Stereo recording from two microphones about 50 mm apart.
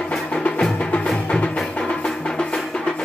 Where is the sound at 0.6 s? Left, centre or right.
Centre.